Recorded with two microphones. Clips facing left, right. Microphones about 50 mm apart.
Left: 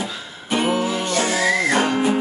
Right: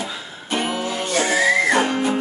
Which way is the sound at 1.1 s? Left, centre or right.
Centre.